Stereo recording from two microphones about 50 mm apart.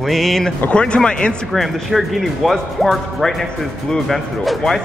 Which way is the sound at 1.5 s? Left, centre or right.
Centre.